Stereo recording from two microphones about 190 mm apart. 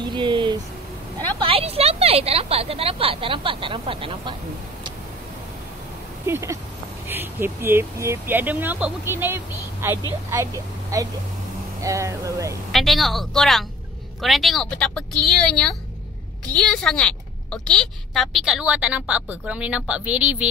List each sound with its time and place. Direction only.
0.0 s a sound: 25° right (ahead or behind)
1.4 s a woman's voice: 30° right (ahead or behind)
6.2 s a woman's voice: 15° right (ahead or behind)
12.7 s a woman's voice: centre (ahead or behind)